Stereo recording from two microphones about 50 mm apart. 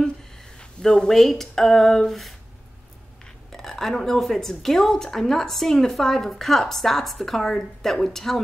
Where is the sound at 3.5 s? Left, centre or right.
Centre.